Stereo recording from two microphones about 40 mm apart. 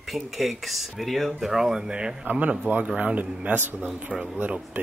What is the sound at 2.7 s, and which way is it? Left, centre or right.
Speech, right.